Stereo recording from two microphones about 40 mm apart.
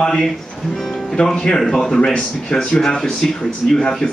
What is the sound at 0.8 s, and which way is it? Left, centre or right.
Music, centre.